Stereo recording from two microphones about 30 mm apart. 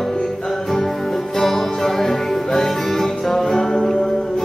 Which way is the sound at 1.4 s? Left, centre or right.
Centre.